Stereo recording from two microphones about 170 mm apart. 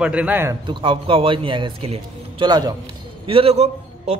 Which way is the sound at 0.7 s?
30° right (ahead or behind).